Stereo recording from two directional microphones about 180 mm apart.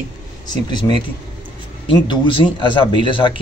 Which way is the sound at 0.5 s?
25° left (ahead or behind).